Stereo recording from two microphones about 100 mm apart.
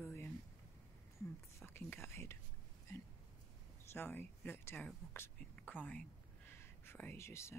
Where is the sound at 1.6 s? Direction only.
25° left (ahead or behind).